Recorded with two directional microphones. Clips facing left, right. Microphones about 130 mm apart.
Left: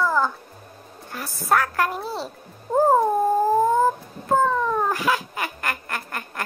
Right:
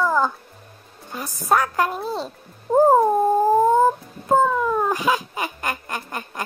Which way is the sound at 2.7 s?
15° right (ahead or behind).